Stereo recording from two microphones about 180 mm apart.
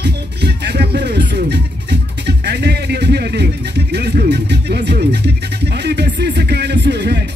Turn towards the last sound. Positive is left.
turn(degrees=-70)  # may be behind; listen again after turning